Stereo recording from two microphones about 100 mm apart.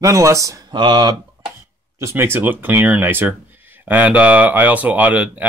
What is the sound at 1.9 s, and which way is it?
Speech, 25° right (ahead or behind).